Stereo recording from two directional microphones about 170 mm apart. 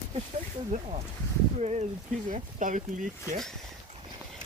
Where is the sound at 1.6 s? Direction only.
45° right (ahead or behind).